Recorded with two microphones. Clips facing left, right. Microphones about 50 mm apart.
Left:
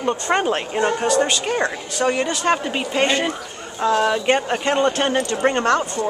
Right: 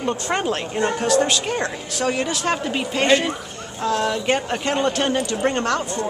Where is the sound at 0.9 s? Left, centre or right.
Centre.